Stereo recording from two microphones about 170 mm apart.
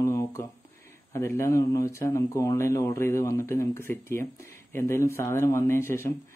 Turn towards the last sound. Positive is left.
turn(degrees=15)  # may be behind; listen again after turning